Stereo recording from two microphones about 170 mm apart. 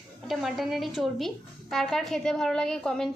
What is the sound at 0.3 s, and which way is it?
A woman's voice, centre (ahead or behind).